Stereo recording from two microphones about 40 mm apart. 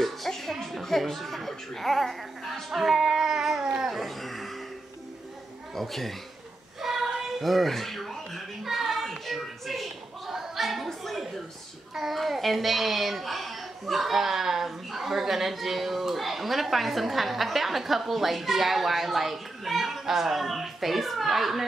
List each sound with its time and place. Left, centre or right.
0.0 s speech: centre
2.8 s baby cry: centre
3.9 s speech: centre
5.8 s a child's voice: centre
6.8 s child singing: centre
7.3 s a sound: centre
11.9 s a child's voice: centre